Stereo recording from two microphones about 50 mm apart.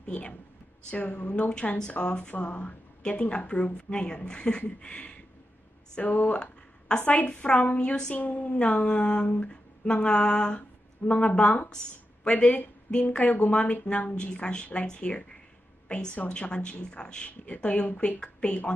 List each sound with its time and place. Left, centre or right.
0.0 s a woman's voice: left
14.1 s a woman's voice: centre